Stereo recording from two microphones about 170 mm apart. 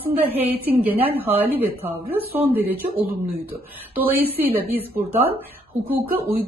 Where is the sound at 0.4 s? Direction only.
10° right (ahead or behind).